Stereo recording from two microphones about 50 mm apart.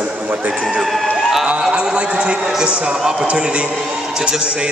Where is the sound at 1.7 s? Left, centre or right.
Right.